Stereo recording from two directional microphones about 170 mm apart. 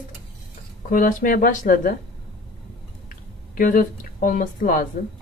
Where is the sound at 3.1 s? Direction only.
50° left (ahead or behind).